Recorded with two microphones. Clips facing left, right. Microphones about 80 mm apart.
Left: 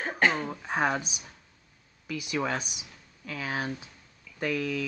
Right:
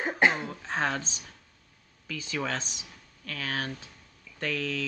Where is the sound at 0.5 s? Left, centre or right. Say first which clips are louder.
Left 2 dB; centre.